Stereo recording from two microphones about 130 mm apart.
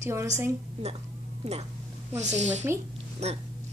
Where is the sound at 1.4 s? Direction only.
55° right (ahead or behind).